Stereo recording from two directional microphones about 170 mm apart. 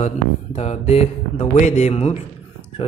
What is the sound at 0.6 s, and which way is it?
A man's voice, 40° left (ahead or behind).